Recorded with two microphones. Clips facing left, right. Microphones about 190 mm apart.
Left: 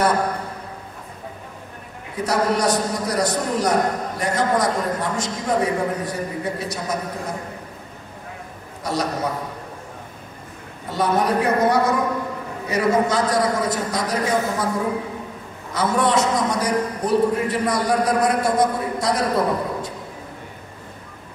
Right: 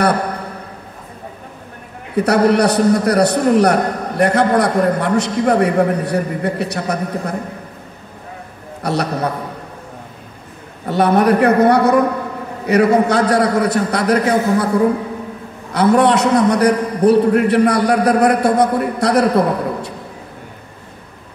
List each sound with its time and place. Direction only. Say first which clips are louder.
2.1 s a man's voice: right 8 dB; 65° right (ahead or behind)
8.8 s a man's voice: right 5 dB; 65° right (ahead or behind)
10.9 s a man's voice: right 7 dB; 65° right (ahead or behind)
15.7 s a man's voice: right 7 dB; 65° right (ahead or behind)